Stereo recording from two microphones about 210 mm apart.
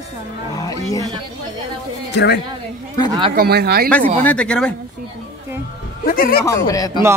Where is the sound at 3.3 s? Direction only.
50° right (ahead or behind).